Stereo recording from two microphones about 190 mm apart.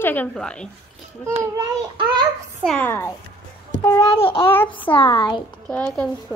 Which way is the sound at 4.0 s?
30° left (ahead or behind).